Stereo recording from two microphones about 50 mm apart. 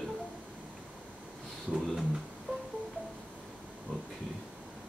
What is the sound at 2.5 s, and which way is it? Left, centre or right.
Music, centre.